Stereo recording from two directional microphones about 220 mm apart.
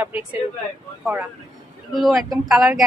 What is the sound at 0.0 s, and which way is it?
Speech, 5° right (ahead or behind).